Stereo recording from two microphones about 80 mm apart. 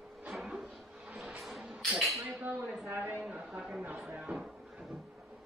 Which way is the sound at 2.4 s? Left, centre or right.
Centre.